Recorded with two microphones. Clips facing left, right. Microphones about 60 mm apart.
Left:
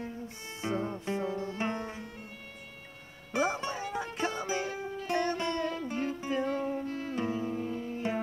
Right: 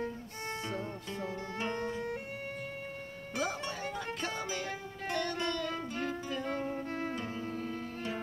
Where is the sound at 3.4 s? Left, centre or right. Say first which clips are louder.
Left 5 dB; left.